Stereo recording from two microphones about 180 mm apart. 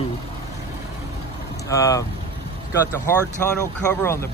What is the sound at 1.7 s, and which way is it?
Speech, 20° left (ahead or behind).